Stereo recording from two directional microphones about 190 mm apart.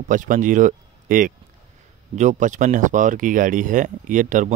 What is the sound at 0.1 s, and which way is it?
Speech, 45° right (ahead or behind).